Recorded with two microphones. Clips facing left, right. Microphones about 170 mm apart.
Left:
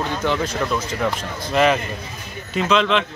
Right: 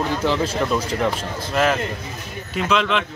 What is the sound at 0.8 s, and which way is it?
Speech, 30° right (ahead or behind).